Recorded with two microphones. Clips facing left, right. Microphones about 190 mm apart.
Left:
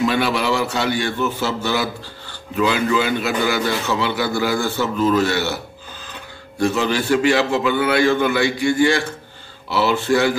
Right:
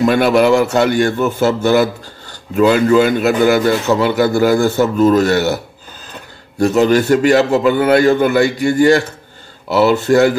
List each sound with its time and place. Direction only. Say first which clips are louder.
0.0 s a man's voice: right 8 dB; 50° right (ahead or behind)
6.6 s a man's voice: right 8 dB; 40° right (ahead or behind)